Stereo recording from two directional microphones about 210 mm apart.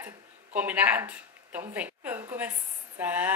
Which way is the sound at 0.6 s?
5° right (ahead or behind).